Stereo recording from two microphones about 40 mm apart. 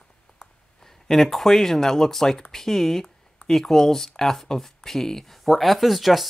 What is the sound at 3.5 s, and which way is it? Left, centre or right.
Speech, centre.